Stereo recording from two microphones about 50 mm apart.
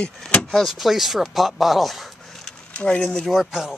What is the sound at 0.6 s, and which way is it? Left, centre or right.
Speech, centre.